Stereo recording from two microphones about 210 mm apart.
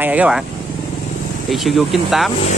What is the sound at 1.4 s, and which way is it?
Speech, centre (ahead or behind).